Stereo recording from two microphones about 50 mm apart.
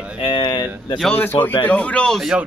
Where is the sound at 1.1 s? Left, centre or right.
Left.